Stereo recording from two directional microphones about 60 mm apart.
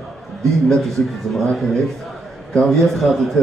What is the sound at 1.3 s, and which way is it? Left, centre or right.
A man's voice, centre.